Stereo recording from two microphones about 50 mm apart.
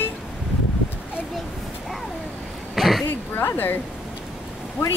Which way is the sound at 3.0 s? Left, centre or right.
Left.